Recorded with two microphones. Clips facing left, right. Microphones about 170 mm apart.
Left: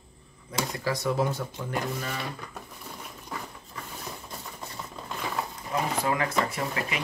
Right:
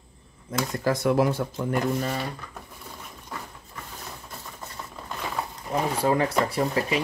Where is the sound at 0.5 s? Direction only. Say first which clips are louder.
Right 4 dB; 50° right (ahead or behind).